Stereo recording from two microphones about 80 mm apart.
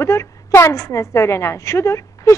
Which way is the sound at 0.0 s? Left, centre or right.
Left.